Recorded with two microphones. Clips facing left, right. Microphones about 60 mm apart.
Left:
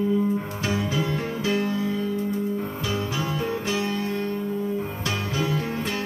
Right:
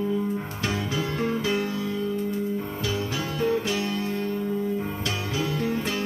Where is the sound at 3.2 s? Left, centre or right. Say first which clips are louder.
Right 2 dB; left.